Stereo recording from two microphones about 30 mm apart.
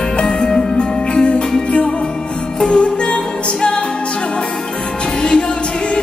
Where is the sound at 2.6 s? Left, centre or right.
Left.